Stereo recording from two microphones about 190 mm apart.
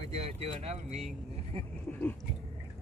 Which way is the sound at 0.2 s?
35° right (ahead or behind).